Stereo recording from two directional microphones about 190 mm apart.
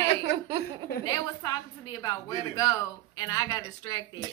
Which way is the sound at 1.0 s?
20° left (ahead or behind).